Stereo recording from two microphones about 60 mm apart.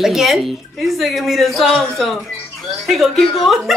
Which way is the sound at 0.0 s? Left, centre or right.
Centre.